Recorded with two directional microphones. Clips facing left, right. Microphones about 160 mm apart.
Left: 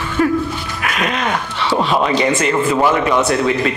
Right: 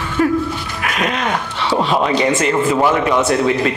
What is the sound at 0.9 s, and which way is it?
A man's voice, 30° right (ahead or behind).